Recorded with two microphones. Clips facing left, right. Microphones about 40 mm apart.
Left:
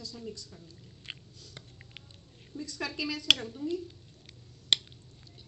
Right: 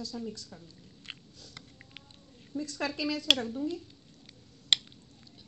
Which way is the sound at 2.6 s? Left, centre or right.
Right.